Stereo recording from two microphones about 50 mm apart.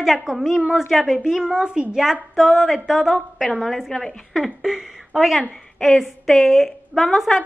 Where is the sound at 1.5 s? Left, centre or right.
Centre.